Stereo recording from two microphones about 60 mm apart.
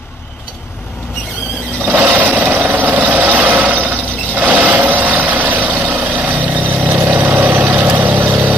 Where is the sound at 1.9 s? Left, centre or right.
Right.